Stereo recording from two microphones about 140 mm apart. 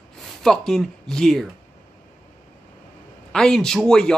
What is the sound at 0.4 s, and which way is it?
A man's voice, centre (ahead or behind).